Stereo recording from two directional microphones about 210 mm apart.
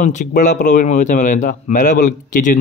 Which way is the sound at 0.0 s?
35° left (ahead or behind).